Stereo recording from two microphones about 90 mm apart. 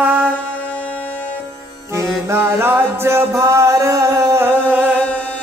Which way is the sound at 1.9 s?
25° right (ahead or behind).